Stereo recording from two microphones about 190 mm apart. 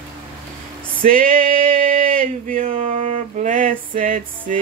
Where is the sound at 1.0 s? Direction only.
45° right (ahead or behind).